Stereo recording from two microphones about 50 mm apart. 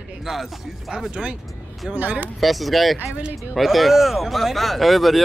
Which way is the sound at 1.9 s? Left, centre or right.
Right.